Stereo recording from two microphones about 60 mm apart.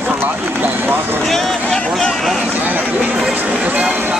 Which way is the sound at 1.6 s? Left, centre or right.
Centre.